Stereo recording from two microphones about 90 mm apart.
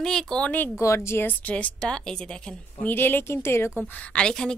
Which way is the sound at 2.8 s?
25° left (ahead or behind).